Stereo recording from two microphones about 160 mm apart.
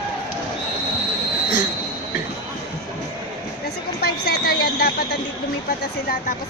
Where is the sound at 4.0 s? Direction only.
80° left.